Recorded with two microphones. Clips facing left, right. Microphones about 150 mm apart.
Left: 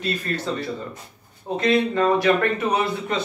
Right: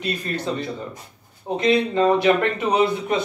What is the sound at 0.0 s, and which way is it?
A man's voice, 20° right (ahead or behind).